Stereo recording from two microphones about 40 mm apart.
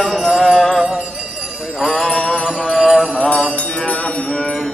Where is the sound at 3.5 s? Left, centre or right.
Left.